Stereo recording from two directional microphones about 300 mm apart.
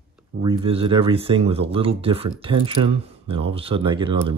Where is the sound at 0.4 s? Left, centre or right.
Centre.